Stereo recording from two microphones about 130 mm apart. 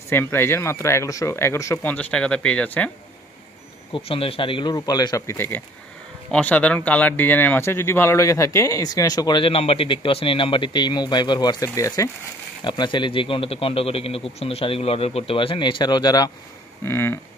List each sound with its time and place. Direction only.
0.1 s speech: 15° left (ahead or behind)
3.9 s speech: 45° left (ahead or behind)
4.7 s speech: 30° left (ahead or behind)
9.5 s speech: 50° left (ahead or behind); by 12.1 s 25° left (ahead or behind)
12.6 s speech: 35° left (ahead or behind)
16.8 s speech: 20° left (ahead or behind)